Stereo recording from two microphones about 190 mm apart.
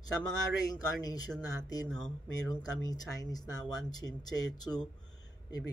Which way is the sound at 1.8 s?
5° left (ahead or behind).